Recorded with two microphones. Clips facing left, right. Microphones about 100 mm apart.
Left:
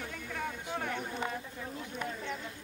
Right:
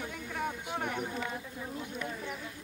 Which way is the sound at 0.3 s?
25° right (ahead or behind).